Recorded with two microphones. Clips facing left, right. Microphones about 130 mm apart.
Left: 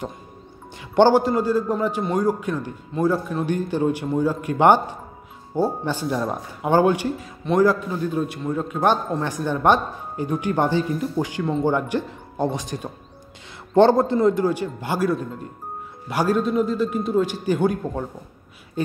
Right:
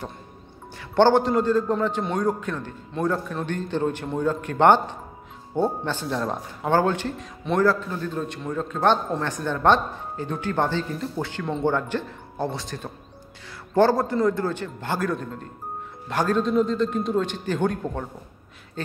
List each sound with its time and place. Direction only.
0.7 s a man's voice: 15° left (ahead or behind)
11.4 s speech: centre (ahead or behind)
11.7 s a man's voice: 15° left (ahead or behind)